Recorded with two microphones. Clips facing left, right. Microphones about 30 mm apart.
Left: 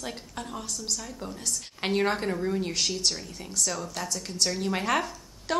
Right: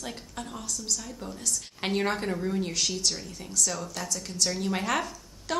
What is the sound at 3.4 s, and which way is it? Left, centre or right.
Speech, centre.